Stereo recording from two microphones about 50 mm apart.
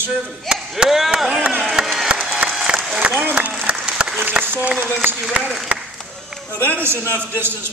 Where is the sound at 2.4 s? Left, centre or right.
Right.